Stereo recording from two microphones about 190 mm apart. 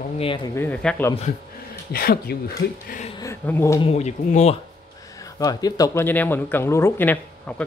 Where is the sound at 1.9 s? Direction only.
50° left (ahead or behind).